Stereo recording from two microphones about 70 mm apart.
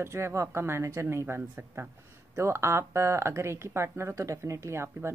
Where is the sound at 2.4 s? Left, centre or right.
Right.